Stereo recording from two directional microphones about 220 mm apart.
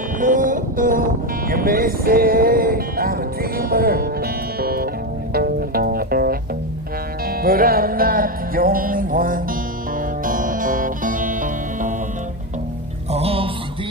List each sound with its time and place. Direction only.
0.2 s music: 35° right (ahead or behind)
7.4 s music: 40° right (ahead or behind)
13.1 s a sound: 25° right (ahead or behind)